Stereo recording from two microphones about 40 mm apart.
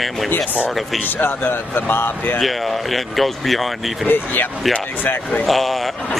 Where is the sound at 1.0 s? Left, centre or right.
Left.